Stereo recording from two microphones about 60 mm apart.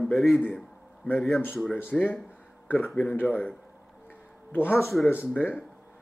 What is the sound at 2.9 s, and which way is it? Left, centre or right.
Speech, left.